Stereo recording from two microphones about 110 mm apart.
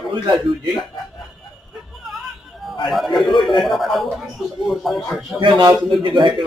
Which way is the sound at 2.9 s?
Centre (ahead or behind).